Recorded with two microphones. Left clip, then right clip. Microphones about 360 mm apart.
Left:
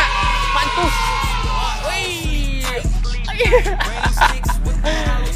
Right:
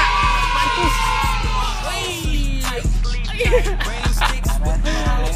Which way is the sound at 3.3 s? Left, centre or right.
Centre.